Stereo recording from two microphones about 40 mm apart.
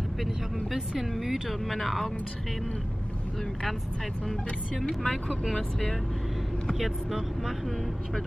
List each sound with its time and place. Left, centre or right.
0.9 s speech: centre
4.8 s speech: centre
6.7 s speech: centre